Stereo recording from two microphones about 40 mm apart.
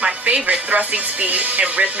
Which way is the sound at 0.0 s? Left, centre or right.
Right.